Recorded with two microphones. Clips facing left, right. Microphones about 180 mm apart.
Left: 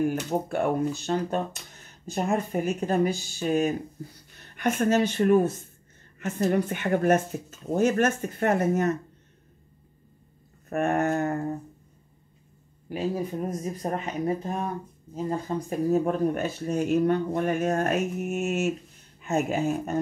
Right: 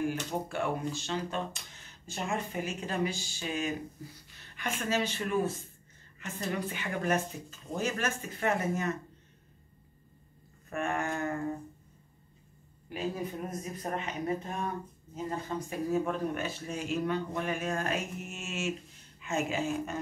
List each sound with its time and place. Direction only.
0.0 s speech: 50° left (ahead or behind)
4.3 s a sound: 45° left (ahead or behind)
4.6 s speech: 55° left (ahead or behind)
10.7 s speech: 45° left (ahead or behind)
12.9 s speech: 35° left (ahead or behind); by 19.8 s 55° left (ahead or behind)